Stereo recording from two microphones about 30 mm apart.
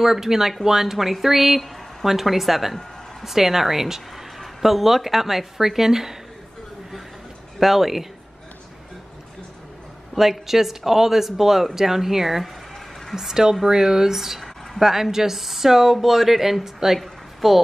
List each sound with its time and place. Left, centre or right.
0.0 s speech: centre
7.6 s speech: centre
10.4 s speech: centre
17.0 s a sound: centre